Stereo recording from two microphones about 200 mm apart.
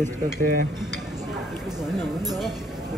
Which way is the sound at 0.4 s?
50° right (ahead or behind).